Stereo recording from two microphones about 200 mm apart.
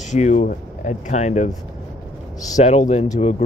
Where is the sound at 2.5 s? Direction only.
40° left (ahead or behind).